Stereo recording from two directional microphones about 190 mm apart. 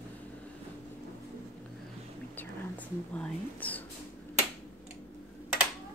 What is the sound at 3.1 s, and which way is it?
Speech, 5° left (ahead or behind).